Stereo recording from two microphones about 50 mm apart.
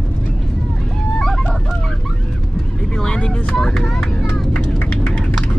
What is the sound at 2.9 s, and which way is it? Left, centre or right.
Speech, centre.